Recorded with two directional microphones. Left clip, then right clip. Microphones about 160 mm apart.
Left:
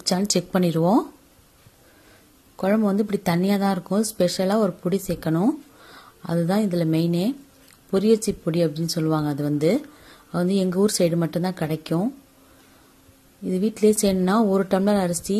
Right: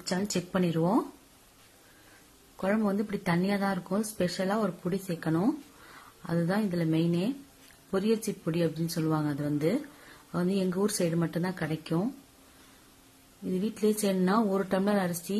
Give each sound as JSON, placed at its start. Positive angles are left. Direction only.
{"t": 0.0, "sound": "speech", "side_deg": 35}
{"t": 2.5, "sound": "speech", "side_deg": 30}
{"t": 13.5, "sound": "speech", "side_deg": 30}